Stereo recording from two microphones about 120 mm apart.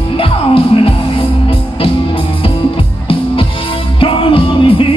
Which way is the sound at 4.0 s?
45° left (ahead or behind).